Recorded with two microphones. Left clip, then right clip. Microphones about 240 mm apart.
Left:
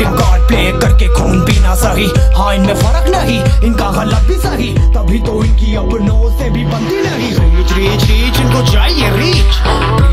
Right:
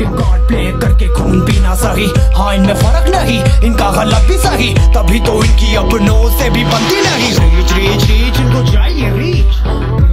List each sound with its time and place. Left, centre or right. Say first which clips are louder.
0.0 s music: left 4 dB; left; by 7.4 s centre
7.7 s music: right 1 dB; centre
8.4 s music: left 3 dB; centre; by 10.0 s left